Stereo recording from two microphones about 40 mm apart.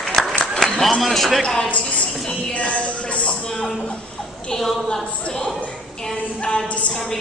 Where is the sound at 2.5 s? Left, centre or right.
Left.